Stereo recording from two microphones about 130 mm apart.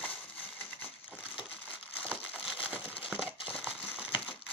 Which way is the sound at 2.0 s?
10° right (ahead or behind).